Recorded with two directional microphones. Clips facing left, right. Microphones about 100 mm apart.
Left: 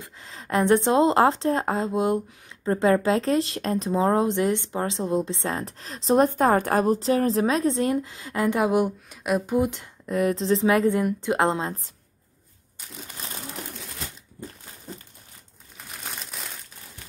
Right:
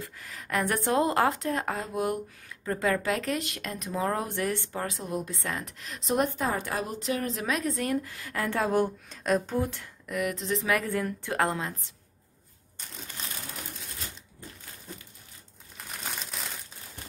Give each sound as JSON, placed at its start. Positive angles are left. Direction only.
{"t": 0.0, "sound": "a woman's voice", "side_deg": 25}
{"t": 6.4, "sound": "a woman's voice", "side_deg": 50}
{"t": 10.0, "sound": "a woman's voice", "side_deg": 30}
{"t": 15.9, "sound": "crumpling", "side_deg": 0}